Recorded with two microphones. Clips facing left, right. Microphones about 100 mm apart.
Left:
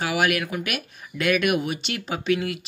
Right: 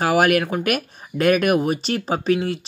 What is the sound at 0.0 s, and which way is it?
Speech, 45° right (ahead or behind).